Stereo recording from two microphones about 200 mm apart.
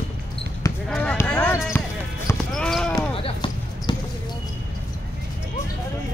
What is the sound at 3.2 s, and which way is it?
Basketball bounce, 25° left (ahead or behind).